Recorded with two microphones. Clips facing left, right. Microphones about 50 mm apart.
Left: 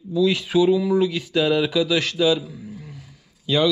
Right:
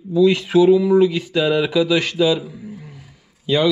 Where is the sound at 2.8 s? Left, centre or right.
Centre.